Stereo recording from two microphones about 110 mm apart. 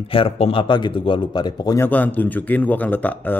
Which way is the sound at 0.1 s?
55° left (ahead or behind).